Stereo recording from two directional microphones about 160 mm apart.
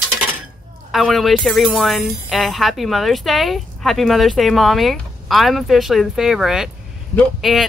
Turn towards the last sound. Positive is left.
turn(degrees=0)  # may be behind; listen again after turning